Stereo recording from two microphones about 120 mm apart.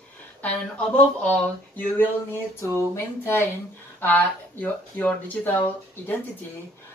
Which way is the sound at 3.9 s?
15° left (ahead or behind).